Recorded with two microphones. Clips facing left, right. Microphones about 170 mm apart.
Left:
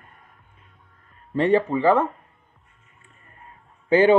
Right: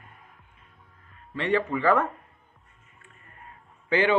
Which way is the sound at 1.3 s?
35° left (ahead or behind).